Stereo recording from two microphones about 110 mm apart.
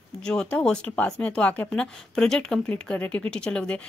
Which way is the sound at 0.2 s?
5° left (ahead or behind).